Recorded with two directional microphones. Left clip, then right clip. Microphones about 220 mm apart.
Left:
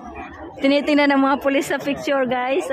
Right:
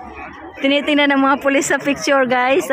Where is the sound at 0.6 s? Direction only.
5° left (ahead or behind).